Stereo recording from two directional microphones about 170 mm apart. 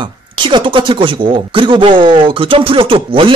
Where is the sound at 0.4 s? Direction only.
30° right (ahead or behind).